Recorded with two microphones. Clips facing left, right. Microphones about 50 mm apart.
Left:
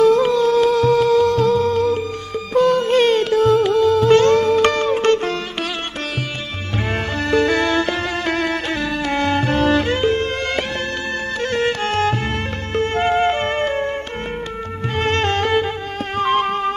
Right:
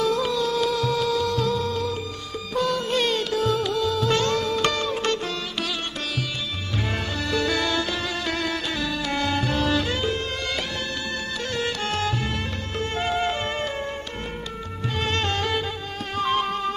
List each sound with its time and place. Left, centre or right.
0.0 s music: left
7.2 s music: left
15.0 s music: left